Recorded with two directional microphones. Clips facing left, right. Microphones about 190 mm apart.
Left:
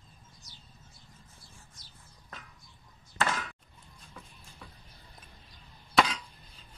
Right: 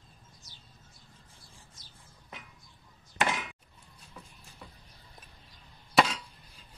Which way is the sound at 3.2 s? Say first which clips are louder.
Right 1 dB; 15° right (ahead or behind).